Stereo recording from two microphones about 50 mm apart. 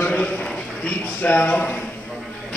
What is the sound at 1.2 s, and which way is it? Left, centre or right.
Speech, left.